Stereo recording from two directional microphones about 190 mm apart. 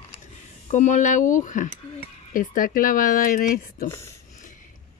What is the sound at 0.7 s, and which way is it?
Speech, 40° left (ahead or behind).